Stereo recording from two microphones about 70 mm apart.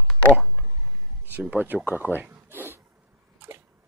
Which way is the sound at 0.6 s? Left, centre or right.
Centre.